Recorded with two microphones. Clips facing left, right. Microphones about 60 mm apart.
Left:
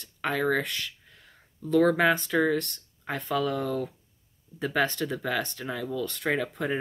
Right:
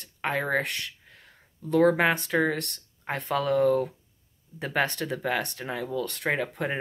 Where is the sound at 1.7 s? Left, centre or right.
Right.